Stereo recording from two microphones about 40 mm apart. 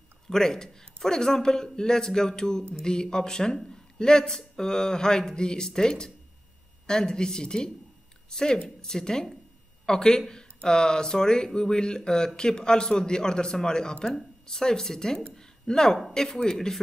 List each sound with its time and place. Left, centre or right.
0.3 s speech: centre
15.2 s a sound: centre
16.4 s speech: centre